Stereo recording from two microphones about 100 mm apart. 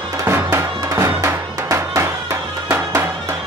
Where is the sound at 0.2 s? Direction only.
25° right (ahead or behind).